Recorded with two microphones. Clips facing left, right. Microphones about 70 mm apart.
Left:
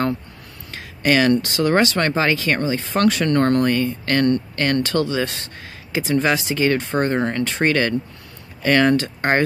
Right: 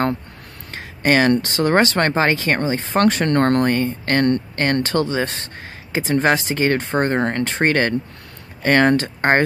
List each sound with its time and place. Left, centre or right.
0.7 s speech: right